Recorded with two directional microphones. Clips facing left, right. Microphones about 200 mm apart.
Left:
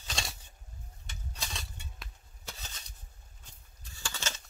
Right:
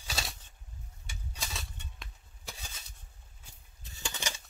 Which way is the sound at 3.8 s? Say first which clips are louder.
Right 1 dB; 20° right (ahead or behind).